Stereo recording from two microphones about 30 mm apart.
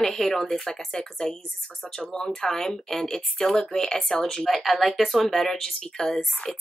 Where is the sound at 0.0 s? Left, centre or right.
Centre.